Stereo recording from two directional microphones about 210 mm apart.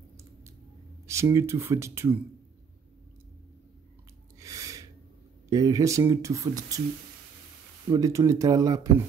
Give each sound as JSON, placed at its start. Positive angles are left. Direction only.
{"t": 1.0, "sound": "speech", "side_deg": -15}
{"t": 4.4, "sound": "gasp", "side_deg": -15}
{"t": 5.5, "sound": "speech", "side_deg": -15}
{"t": 7.9, "sound": "speech", "side_deg": -15}